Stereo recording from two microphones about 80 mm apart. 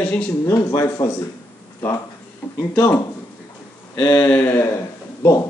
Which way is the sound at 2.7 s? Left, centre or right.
Left.